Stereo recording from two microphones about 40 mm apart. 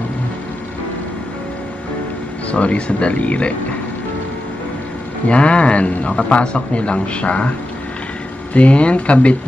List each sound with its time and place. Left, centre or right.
2.5 s speech: left
5.3 s a man's voice: left
8.5 s speech: left